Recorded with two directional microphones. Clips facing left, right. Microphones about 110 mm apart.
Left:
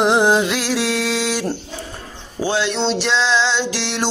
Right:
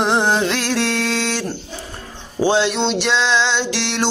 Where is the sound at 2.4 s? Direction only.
20° right (ahead or behind).